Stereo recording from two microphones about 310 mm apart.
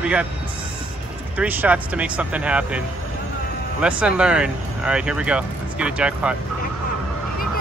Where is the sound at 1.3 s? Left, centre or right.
Centre.